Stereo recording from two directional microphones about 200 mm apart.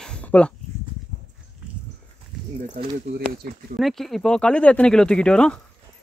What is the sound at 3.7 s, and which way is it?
Speech, centre (ahead or behind).